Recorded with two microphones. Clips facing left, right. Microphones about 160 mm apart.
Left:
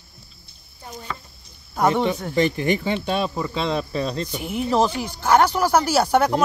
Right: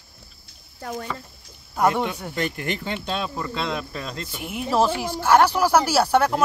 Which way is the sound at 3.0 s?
15° left (ahead or behind).